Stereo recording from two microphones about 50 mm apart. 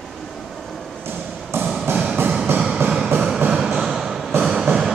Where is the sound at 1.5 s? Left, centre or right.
Right.